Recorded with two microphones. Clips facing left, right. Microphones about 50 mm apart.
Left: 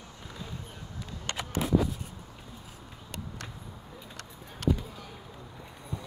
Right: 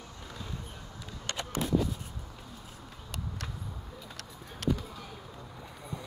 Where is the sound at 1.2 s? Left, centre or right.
Centre.